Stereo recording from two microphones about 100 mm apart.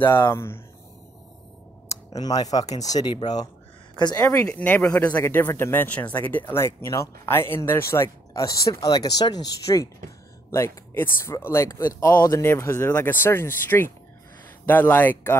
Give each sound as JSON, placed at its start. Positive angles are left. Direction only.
{"t": 0.3, "sound": "speech", "side_deg": 25}
{"t": 1.9, "sound": "speech", "side_deg": 40}
{"t": 4.5, "sound": "speech", "side_deg": 15}
{"t": 10.5, "sound": "speech", "side_deg": 25}